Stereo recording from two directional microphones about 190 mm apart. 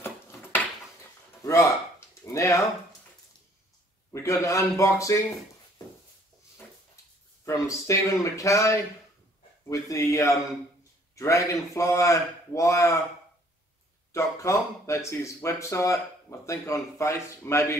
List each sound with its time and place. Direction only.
1.4 s a sound: 15° left (ahead or behind)
4.1 s speech: 15° left (ahead or behind)
7.4 s speech: 15° left (ahead or behind)
14.1 s speech: 15° left (ahead or behind)